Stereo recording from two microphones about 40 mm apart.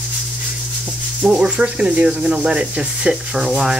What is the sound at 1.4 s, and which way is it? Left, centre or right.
Rub, right.